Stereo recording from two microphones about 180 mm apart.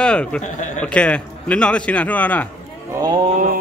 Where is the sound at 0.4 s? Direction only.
45° left (ahead or behind).